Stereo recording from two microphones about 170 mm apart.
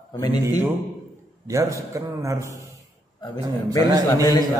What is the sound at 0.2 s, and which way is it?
Speech, 25° left (ahead or behind).